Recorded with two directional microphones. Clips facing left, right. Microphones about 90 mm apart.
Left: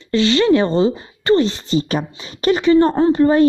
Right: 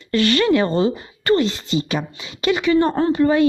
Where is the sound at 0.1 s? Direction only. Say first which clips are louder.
Left 3 dB; 20° left (ahead or behind).